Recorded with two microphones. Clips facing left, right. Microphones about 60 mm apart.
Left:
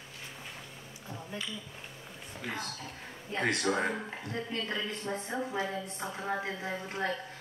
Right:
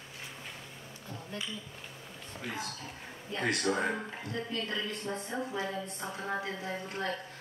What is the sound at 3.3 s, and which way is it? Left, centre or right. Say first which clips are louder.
A woman's voice: left 1 dB; left.